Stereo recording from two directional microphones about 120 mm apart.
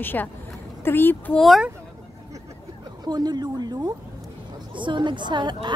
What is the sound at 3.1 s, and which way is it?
A woman's voice, 35° right (ahead or behind).